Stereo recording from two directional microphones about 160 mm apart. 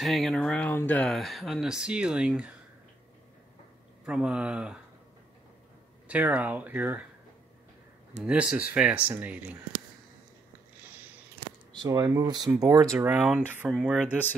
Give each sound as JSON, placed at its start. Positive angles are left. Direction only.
{"t": 0.0, "sound": "speech", "side_deg": 0}
{"t": 4.0, "sound": "speech", "side_deg": -5}
{"t": 6.0, "sound": "speech", "side_deg": -10}
{"t": 8.2, "sound": "speech", "side_deg": -5}
{"t": 11.3, "sound": "a sound", "side_deg": -25}
{"t": 12.5, "sound": "speech", "side_deg": -20}
{"t": 13.0, "sound": "speech", "side_deg": -5}